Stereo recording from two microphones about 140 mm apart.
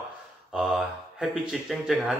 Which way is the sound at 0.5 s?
5° right (ahead or behind).